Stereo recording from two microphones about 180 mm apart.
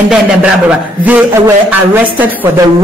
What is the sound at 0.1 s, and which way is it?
A woman's voice, 5° right (ahead or behind).